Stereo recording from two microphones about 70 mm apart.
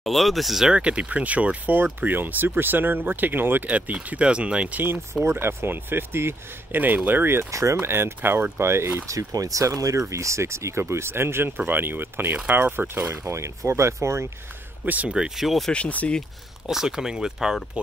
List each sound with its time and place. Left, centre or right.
0.0 s speech: centre
5.2 s speech: right
7.5 s speech: right
9.1 s speech: right
14.9 s speech: right
15.1 s speech: centre
15.7 s speech: centre
16.6 s speech: centre